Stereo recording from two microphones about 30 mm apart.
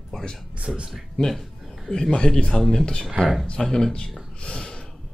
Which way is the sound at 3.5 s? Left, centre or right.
Centre.